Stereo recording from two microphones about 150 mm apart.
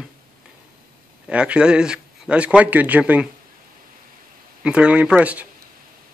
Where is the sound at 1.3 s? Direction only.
5° right (ahead or behind).